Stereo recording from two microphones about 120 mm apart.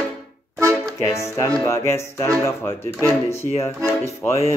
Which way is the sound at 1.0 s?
25° left (ahead or behind).